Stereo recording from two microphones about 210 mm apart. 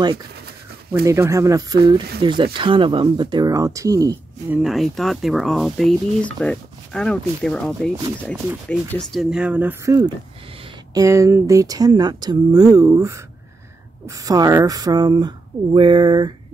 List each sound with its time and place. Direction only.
1.0 s speech: 15° right (ahead or behind)
4.6 s speech: centre (ahead or behind); by 16.3 s 20° right (ahead or behind)